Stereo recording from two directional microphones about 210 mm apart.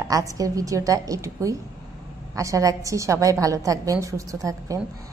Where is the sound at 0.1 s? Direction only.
15° right (ahead or behind).